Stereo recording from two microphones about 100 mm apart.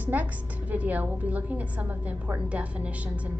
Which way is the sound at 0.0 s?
15° right (ahead or behind).